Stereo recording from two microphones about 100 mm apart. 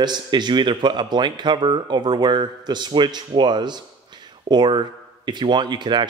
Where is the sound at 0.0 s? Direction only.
45° right (ahead or behind).